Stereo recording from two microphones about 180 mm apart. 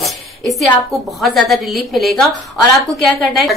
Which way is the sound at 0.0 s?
Centre (ahead or behind).